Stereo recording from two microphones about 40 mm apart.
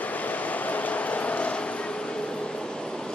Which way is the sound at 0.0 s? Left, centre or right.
Left.